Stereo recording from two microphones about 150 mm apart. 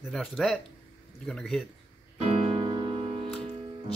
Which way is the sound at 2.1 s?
40° right (ahead or behind).